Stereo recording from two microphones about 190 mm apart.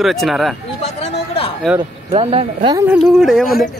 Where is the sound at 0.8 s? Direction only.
35° left (ahead or behind).